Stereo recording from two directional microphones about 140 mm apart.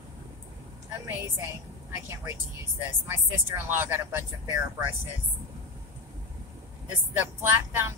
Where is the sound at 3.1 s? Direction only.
15° right (ahead or behind).